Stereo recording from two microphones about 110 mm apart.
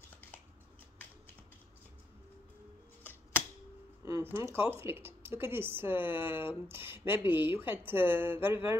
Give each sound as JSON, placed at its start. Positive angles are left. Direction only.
{"t": 3.0, "sound": "typewriter", "side_deg": 15}
{"t": 4.0, "sound": "speech", "side_deg": -25}